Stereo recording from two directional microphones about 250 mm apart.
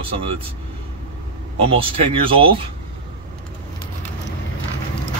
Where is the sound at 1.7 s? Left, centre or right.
Right.